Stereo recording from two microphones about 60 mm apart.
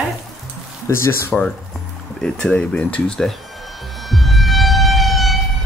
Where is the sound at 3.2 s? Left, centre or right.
Centre.